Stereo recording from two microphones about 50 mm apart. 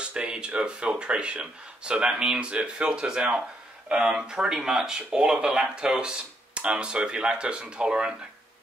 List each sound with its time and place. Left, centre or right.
0.0 s speech: right